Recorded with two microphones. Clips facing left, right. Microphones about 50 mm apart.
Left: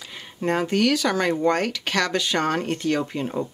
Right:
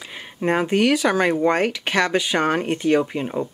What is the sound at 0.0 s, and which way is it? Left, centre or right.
Speech, right.